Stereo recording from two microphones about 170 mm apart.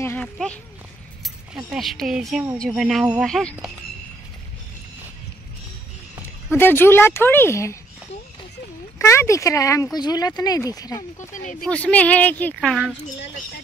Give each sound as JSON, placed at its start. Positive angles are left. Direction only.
{"t": 0.0, "sound": "a woman's voice", "side_deg": 10}
{"t": 6.5, "sound": "a woman's voice", "side_deg": 15}
{"t": 8.9, "sound": "a woman's voice", "side_deg": 15}
{"t": 11.6, "sound": "a woman's voice", "side_deg": 5}